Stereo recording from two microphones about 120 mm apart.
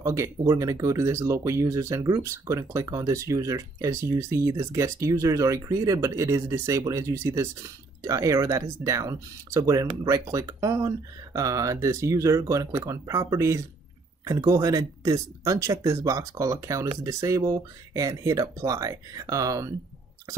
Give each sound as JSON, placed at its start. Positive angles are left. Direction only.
{"t": 0.0, "sound": "speech", "side_deg": -25}